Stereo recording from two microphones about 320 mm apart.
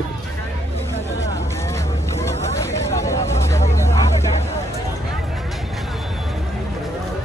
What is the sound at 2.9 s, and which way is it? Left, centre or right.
Vehicle, centre.